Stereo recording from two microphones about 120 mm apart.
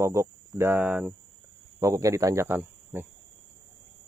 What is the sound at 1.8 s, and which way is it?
Speech, 25° right (ahead or behind).